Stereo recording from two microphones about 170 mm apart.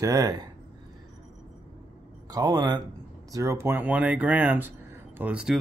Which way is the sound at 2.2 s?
25° right (ahead or behind).